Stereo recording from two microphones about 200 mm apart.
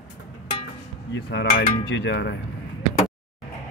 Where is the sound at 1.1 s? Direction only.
60° left (ahead or behind).